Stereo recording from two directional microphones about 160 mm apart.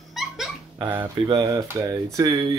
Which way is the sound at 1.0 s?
25° right (ahead or behind).